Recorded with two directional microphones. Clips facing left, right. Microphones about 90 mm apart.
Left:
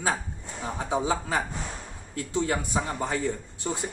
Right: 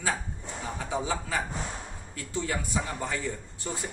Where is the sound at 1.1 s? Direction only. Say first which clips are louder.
Left 3 dB; 30° left (ahead or behind).